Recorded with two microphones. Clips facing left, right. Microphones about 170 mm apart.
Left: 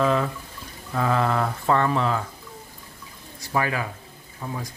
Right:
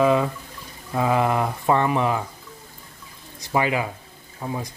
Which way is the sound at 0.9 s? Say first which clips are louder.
Right 2 dB; 15° right (ahead or behind).